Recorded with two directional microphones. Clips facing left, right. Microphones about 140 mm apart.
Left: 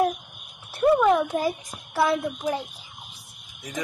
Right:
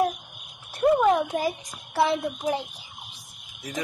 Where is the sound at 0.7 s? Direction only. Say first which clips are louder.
Left 1 dB; 40° right (ahead or behind).